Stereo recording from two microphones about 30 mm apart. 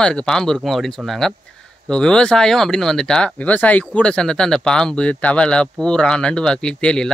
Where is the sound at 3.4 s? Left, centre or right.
Left.